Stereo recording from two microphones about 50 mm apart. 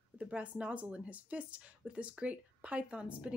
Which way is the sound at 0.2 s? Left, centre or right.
Right.